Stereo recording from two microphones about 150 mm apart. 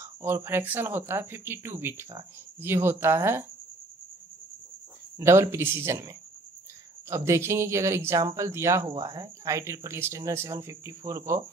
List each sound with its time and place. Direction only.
0.0 s speech: 15° right (ahead or behind)
5.2 s speech: 20° right (ahead or behind)